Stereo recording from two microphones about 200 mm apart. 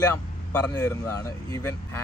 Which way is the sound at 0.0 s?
10° left (ahead or behind).